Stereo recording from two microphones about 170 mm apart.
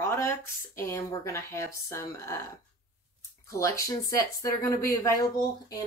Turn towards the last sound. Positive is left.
turn(degrees=20)  # may be behind; listen again after turning